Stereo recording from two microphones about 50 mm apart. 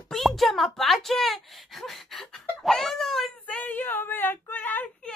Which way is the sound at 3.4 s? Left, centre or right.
Left.